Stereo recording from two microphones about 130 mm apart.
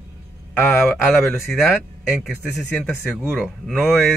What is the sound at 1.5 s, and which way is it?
Speech, centre (ahead or behind).